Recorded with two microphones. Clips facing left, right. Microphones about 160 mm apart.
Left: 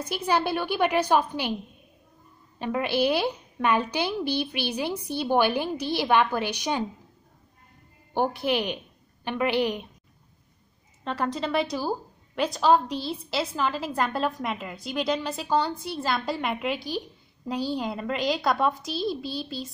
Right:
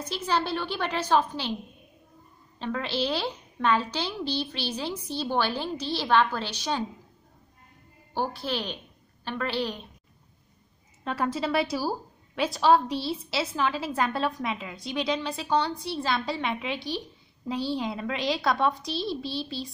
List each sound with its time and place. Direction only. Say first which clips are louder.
0.0 s a woman's voice: left 3 dB; 10° left (ahead or behind)
2.6 s a woman's voice: left 5 dB; 10° left (ahead or behind)
8.1 s a woman's voice: left 5 dB; 15° left (ahead or behind)
11.1 s a woman's voice: even; 5° right (ahead or behind)